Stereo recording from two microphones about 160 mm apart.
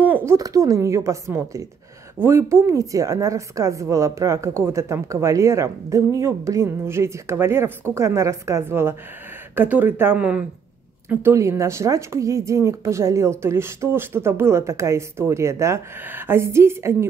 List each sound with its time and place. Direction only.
0.0 s a woman's voice: 15° right (ahead or behind)